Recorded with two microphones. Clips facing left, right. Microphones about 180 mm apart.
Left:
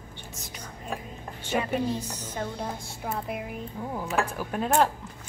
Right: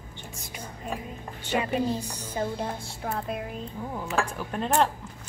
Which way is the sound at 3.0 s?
10° left (ahead or behind).